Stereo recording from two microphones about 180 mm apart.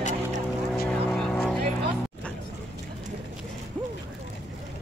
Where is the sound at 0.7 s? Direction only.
Centre (ahead or behind).